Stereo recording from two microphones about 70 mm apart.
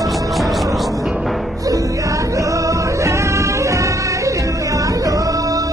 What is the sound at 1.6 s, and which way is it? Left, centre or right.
Music, right.